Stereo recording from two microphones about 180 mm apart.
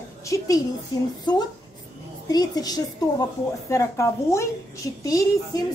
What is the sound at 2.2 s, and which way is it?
A woman's voice, 20° left (ahead or behind).